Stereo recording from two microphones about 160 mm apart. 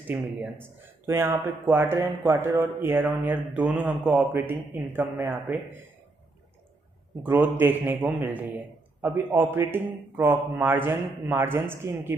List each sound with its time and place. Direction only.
0.0 s a man's voice: 10° right (ahead or behind)
7.2 s a man's voice: 10° right (ahead or behind)